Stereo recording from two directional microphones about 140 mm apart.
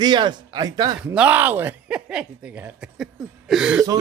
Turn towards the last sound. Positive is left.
turn(degrees=-5)  # may be behind; listen again after turning